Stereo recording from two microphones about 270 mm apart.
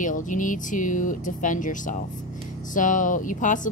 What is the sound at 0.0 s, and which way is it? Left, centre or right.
A woman's voice, left.